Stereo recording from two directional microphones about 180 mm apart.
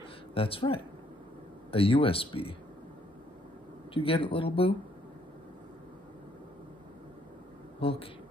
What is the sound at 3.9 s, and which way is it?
Speech, 30° left (ahead or behind).